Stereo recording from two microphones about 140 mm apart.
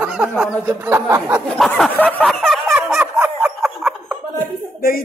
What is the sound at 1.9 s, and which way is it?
Speech, 10° left (ahead or behind).